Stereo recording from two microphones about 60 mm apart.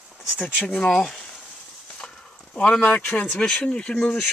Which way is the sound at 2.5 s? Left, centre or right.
Centre.